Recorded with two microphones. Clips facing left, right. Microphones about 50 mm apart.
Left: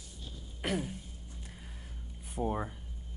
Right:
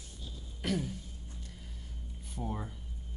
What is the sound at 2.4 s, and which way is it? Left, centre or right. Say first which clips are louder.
Speech: left 6 dB; left.